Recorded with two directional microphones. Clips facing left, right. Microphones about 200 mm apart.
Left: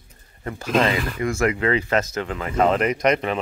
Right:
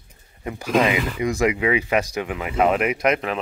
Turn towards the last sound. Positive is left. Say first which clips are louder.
# left 1 dB
turn(degrees=0)  # may be behind; listen again after turning